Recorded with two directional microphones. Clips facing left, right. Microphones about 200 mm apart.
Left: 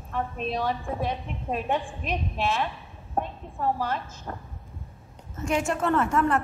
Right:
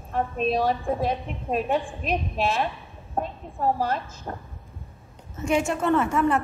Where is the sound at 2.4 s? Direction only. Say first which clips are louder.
Even; 35° right (ahead or behind).